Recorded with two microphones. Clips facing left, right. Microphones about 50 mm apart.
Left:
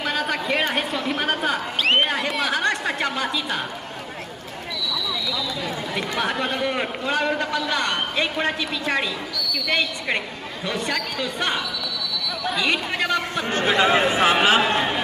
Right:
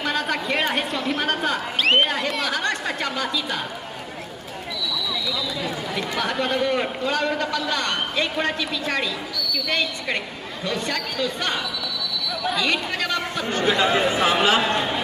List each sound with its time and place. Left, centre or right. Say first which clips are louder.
0.0 s a woman's voice: even; centre
5.9 s a man's voice: left 1 dB; centre